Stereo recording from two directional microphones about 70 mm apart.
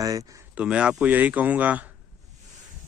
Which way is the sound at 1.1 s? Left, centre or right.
Right.